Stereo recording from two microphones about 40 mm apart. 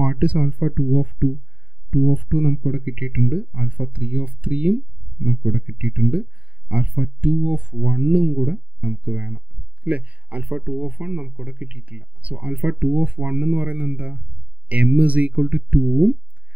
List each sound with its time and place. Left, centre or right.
0.0 s speech: right